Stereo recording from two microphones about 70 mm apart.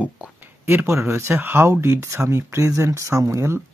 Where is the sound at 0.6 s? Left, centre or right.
Right.